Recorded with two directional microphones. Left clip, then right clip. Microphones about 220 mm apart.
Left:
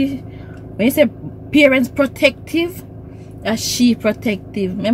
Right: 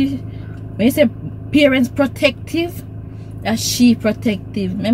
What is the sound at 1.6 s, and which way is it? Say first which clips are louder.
Speech: left 1 dB; 5° left (ahead or behind).